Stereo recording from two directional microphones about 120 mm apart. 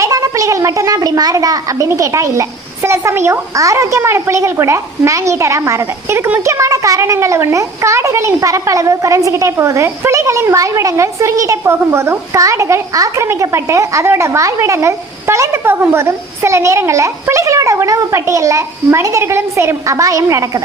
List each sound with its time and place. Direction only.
0.0 s a child's voice: 30° right (ahead or behind)